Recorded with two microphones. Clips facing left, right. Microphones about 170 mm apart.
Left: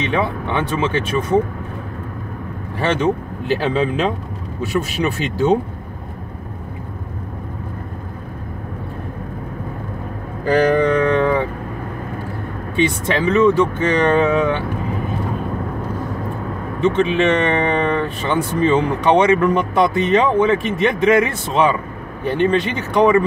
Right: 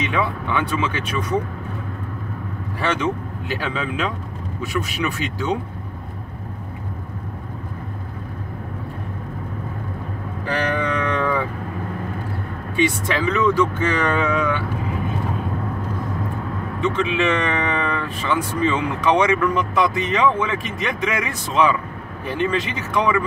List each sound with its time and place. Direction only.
0.0 s speech: 30° left (ahead or behind)
3.5 s speech: 35° left (ahead or behind)
10.4 s speech: 35° left (ahead or behind)
13.0 s speech: 25° left (ahead or behind)
16.8 s speech: 30° left (ahead or behind)